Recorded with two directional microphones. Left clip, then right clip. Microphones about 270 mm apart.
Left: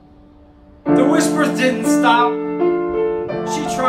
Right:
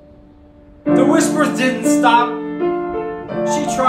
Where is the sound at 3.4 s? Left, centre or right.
Centre.